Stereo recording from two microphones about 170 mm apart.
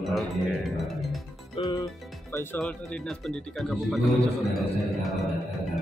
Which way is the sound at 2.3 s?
15° left (ahead or behind).